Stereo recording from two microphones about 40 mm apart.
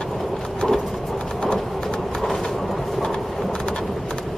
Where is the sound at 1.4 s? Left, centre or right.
Left.